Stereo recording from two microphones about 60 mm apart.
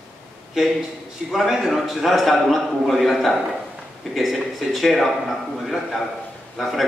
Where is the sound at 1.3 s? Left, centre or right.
Centre.